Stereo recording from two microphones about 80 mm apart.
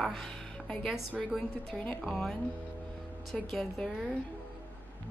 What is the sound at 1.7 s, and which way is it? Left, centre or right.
Speech, centre.